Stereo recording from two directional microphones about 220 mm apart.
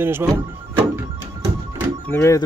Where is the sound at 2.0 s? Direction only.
10° left (ahead or behind).